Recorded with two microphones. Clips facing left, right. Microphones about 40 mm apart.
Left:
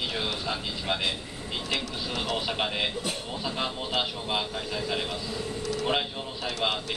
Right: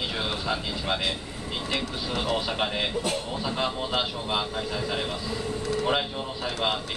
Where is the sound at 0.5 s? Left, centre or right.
Centre.